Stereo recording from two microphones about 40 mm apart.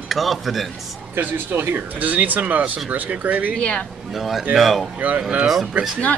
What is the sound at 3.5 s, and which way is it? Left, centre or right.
Speech, left.